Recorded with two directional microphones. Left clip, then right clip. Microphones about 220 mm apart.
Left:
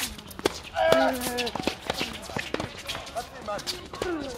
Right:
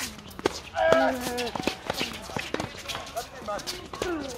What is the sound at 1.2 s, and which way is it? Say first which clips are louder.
Run: left 1 dB; 35° left (ahead or behind).